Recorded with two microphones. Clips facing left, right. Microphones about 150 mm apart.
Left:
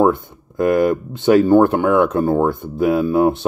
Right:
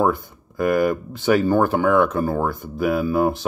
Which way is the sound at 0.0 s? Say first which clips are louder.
Left 5 dB; 20° left (ahead or behind).